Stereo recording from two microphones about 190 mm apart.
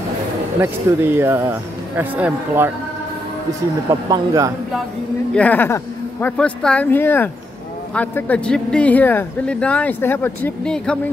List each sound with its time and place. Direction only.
0.6 s speech: 10° right (ahead or behind)
4.1 s speech: 15° right (ahead or behind)
5.3 s speech: 10° left (ahead or behind)